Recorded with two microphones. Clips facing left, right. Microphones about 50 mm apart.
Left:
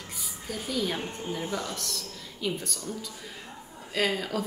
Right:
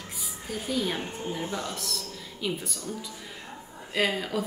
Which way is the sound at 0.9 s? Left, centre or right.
Centre.